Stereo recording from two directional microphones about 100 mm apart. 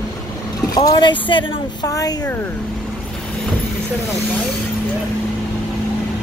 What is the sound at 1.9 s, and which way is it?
Speech, 35° left (ahead or behind).